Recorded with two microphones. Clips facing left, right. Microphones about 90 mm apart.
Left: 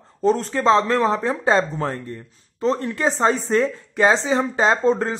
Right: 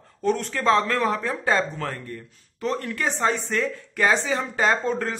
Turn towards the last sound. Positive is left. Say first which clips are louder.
# left 5 dB
turn(degrees=25)  # may be behind; listen again after turning